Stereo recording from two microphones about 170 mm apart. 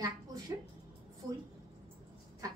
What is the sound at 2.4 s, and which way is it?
Speech, 20° right (ahead or behind).